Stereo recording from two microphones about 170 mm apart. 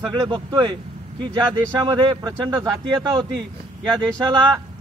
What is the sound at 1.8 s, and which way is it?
A man's voice, 25° right (ahead or behind).